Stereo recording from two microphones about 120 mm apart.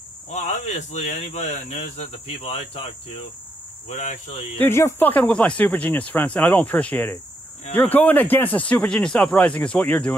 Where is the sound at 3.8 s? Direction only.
70° left (ahead or behind).